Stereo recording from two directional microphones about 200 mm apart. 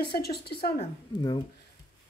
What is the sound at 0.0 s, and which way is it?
Speech, 55° left (ahead or behind).